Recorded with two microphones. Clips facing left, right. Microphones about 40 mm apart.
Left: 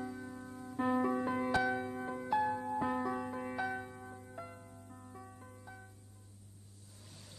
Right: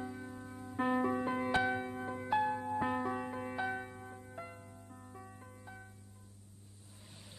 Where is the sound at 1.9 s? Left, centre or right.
Centre.